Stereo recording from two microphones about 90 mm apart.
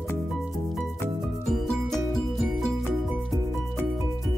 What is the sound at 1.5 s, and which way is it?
Music, centre (ahead or behind).